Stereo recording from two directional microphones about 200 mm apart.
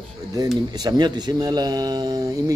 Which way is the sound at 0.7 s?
20° right (ahead or behind).